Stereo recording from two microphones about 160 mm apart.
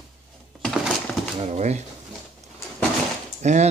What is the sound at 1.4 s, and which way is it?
Speech, 45° right (ahead or behind).